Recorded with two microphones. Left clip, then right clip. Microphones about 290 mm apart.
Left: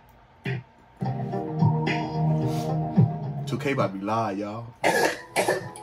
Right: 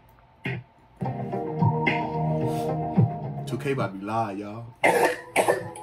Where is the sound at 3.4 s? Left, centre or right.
Centre.